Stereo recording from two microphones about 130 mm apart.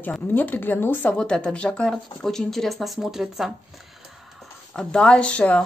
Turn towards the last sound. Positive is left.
turn(degrees=10)  # may be behind; listen again after turning